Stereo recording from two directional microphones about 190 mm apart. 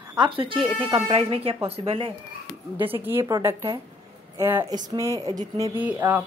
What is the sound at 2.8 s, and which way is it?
Speech, 10° right (ahead or behind).